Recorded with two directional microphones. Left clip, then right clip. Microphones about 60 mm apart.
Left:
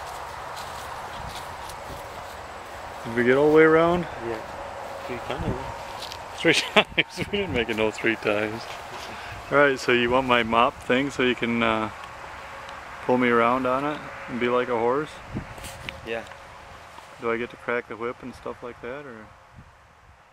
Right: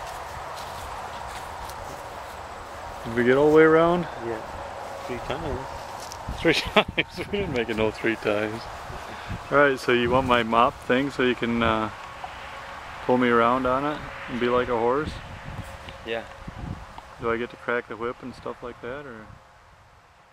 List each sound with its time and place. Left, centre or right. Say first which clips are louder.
3.2 s speech: even; centre
5.0 s speech: right 1 dB; right
5.6 s a sound: left 1 dB; centre
6.3 s speech: left 1 dB; centre
13.0 s speech: even; centre
17.2 s speech: even; centre